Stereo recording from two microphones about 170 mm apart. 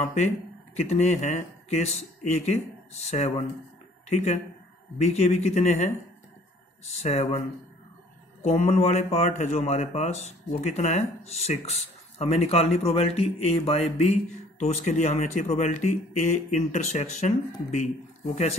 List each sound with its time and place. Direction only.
0.7 s speech: 40° left (ahead or behind)
5.0 s speech: 40° left (ahead or behind)
7.0 s speech: 40° left (ahead or behind)
8.4 s speech: 40° left (ahead or behind)